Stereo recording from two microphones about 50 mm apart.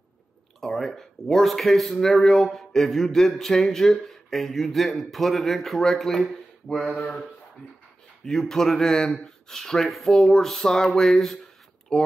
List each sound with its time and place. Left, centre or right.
0.6 s speech: centre
8.3 s speech: centre